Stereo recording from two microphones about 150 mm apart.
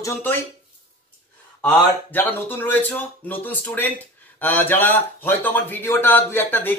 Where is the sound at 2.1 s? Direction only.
15° left (ahead or behind).